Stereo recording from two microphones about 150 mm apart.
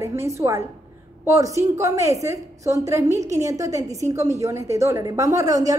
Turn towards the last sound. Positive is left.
turn(degrees=-25)  # may be behind; listen again after turning